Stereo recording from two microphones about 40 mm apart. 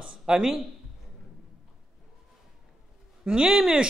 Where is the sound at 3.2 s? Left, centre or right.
Centre.